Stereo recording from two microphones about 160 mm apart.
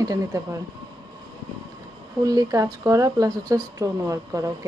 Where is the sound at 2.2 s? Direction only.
20° right (ahead or behind).